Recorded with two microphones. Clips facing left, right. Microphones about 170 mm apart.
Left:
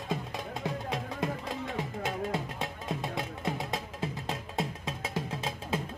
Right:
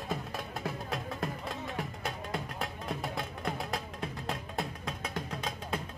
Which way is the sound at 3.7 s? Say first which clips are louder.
Left 2 dB; 25° left (ahead or behind).